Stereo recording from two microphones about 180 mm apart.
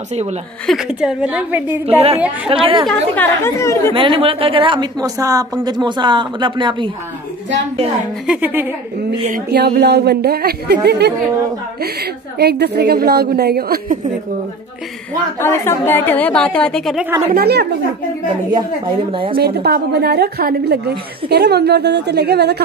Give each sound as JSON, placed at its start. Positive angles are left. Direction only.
{"t": 0.7, "sound": "a woman's voice", "side_deg": -5}
{"t": 1.9, "sound": "a woman's voice", "side_deg": -35}
{"t": 2.1, "sound": "a woman's voice", "side_deg": -5}
{"t": 2.5, "sound": "a woman's voice", "side_deg": -30}
{"t": 2.9, "sound": "a woman's voice", "side_deg": 10}
{"t": 3.9, "sound": "a woman's voice", "side_deg": -30}
{"t": 8.3, "sound": "a woman's voice", "side_deg": -10}
{"t": 9.5, "sound": "a woman's voice", "side_deg": -60}
{"t": 15.4, "sound": "a woman's voice", "side_deg": 15}
{"t": 17.3, "sound": "a woman's voice", "side_deg": -60}
{"t": 19.3, "sound": "a woman's voice", "side_deg": -60}